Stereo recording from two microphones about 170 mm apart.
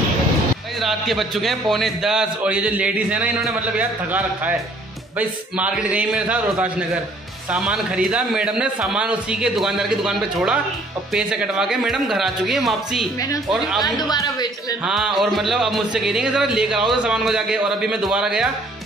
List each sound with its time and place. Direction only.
0.7 s a man's voice: centre (ahead or behind)
5.6 s a man's voice: 5° right (ahead or behind)
13.9 s speech: 25° left (ahead or behind)
14.9 s a man's voice: 5° right (ahead or behind)